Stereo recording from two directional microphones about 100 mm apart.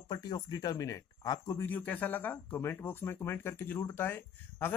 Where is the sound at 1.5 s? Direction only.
20° left (ahead or behind).